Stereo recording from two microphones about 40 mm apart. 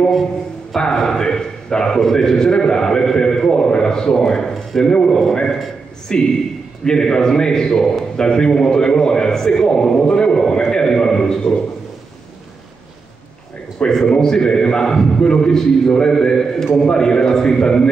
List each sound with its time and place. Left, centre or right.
0.9 s a sound: centre
2.0 s a man's voice: centre
13.8 s a man's voice: centre